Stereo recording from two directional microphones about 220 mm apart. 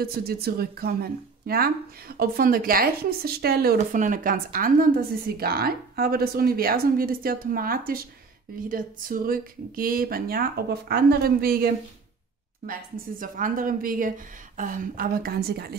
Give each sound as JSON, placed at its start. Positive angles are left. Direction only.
{"t": 0.0, "sound": "a woman's voice", "side_deg": -45}